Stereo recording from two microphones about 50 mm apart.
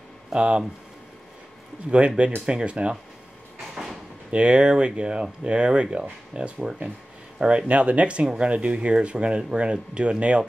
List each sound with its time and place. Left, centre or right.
0.3 s speech: right
1.9 s speech: right
3.7 s sliding door: centre
4.3 s speech: right